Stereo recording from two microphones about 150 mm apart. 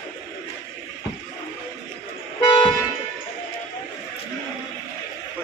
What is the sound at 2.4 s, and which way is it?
Toot, 30° left (ahead or behind).